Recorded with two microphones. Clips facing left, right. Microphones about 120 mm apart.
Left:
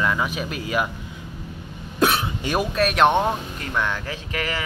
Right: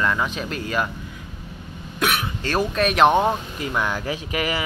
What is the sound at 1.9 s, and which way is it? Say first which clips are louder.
Throat clearing: left 3 dB; 30° left (ahead or behind).